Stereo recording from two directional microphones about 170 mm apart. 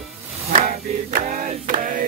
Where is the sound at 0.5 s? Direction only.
50° right (ahead or behind).